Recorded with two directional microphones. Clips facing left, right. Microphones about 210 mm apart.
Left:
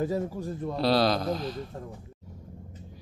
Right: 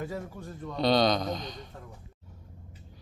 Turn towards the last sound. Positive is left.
turn(degrees=5)  # may be behind; listen again after turning